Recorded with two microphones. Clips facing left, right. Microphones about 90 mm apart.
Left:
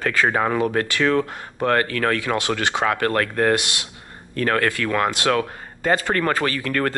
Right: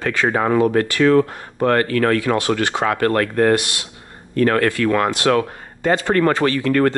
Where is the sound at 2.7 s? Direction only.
25° right (ahead or behind).